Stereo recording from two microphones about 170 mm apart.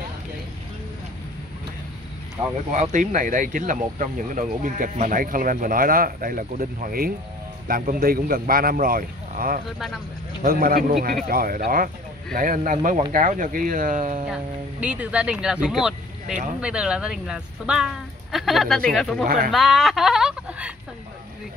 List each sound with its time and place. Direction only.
2.7 s speech: 45° right (ahead or behind)
14.2 s speech: 5° right (ahead or behind)